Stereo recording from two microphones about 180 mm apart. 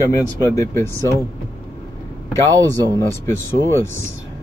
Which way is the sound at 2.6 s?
20° right (ahead or behind).